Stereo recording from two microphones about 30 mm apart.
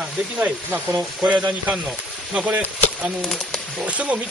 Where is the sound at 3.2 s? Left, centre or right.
Centre.